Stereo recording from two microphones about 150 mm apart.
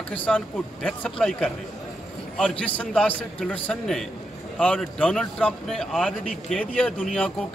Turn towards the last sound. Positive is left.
turn(degrees=5)  # may be behind; listen again after turning